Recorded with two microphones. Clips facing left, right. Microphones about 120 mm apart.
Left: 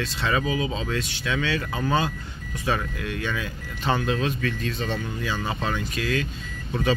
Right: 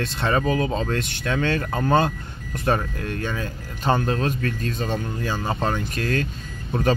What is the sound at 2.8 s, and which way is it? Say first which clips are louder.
Speech: right 2 dB; 40° right (ahead or behind).